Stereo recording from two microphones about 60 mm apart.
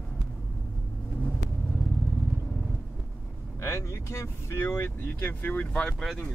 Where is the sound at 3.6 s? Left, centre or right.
Left.